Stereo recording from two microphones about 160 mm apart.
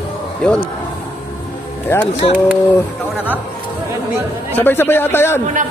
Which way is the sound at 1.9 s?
15° left (ahead or behind).